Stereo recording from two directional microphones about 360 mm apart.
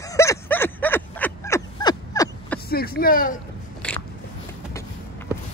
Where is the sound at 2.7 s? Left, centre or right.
Left.